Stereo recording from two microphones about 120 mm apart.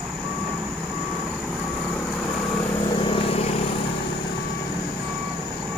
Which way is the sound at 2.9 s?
50° left (ahead or behind).